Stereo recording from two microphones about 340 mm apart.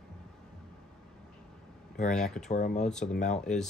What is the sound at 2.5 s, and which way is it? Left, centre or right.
Speech, left.